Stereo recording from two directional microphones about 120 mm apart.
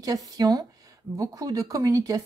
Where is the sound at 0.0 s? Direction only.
30° right (ahead or behind).